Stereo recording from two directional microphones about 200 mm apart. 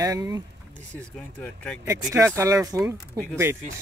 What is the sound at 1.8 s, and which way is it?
Speech, 15° right (ahead or behind).